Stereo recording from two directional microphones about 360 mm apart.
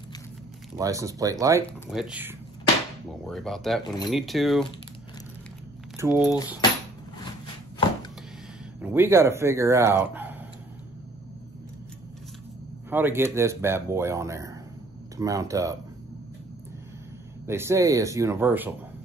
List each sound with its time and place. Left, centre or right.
0.7 s speech: centre
5.9 s speech: centre
6.3 s speech: centre
8.8 s speech: centre
12.9 s speech: centre
17.5 s speech: centre